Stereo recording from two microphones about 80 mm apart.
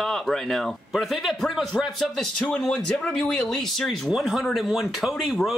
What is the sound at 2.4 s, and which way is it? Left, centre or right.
Speech, centre.